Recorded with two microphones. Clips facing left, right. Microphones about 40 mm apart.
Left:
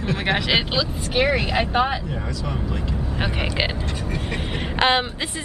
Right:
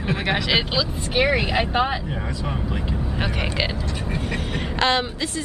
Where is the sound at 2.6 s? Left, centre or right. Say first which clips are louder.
Even; centre.